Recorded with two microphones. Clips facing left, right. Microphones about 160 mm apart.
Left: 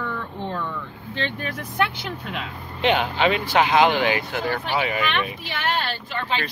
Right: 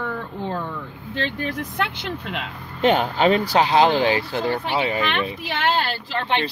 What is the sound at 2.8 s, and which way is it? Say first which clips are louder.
Speech: right 3 dB; 45° right (ahead or behind).